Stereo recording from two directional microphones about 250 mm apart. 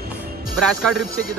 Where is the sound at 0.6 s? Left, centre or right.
Centre.